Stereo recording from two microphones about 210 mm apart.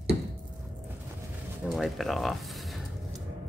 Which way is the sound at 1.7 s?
Centre (ahead or behind).